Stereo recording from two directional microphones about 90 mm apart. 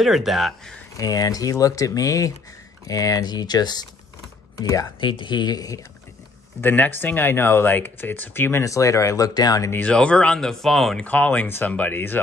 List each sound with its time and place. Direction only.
0.0 s speech: centre (ahead or behind)
0.9 s speech: 40° left (ahead or behind)
4.6 s speech: 40° left (ahead or behind)
5.2 s speech: 55° left (ahead or behind)
6.6 s speech: 20° left (ahead or behind)
8.6 s speech: 35° left (ahead or behind)
9.8 s speech: 10° left (ahead or behind)
11.1 s speech: 15° left (ahead or behind)